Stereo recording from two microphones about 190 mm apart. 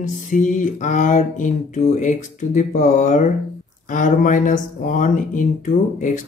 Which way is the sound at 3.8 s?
45° left (ahead or behind).